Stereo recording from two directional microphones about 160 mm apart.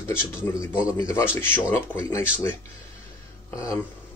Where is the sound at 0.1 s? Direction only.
15° left (ahead or behind).